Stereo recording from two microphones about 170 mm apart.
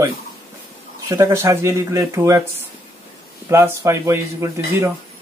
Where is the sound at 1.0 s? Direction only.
20° right (ahead or behind).